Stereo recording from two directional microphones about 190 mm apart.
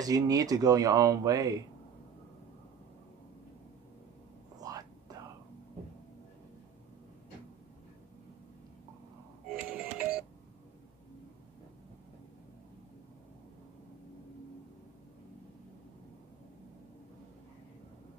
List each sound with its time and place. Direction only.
0.0 s speech: 20° right (ahead or behind)
4.6 s whispering: 20° right (ahead or behind)
9.5 s music: 5° right (ahead or behind)